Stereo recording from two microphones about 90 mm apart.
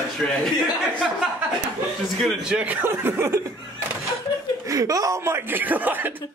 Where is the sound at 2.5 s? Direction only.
20° right (ahead or behind).